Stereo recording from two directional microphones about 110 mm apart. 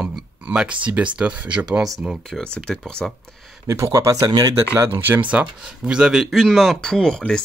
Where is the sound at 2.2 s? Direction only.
5° left (ahead or behind).